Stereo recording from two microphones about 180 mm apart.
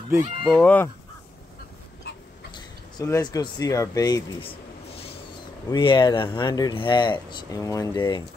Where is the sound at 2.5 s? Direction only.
20° left (ahead or behind).